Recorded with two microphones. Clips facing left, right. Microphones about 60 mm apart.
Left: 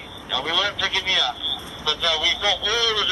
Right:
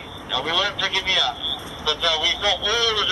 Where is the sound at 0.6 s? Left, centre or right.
Left.